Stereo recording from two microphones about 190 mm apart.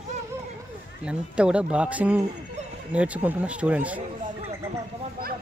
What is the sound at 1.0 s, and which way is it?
Speech, 5° right (ahead or behind).